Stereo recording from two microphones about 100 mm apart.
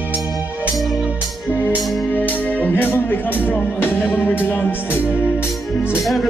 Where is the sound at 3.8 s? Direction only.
20° left (ahead or behind).